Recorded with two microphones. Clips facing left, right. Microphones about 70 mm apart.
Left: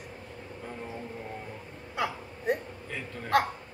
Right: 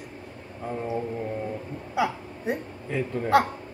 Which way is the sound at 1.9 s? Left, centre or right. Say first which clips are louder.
Right 6 dB; centre.